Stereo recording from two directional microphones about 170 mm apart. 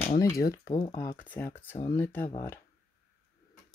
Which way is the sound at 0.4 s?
60° left (ahead or behind).